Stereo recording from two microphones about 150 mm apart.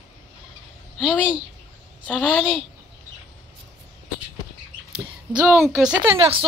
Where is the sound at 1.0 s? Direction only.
5° right (ahead or behind).